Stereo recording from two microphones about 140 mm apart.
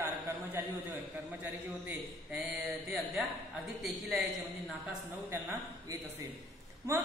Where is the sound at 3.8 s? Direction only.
Centre (ahead or behind).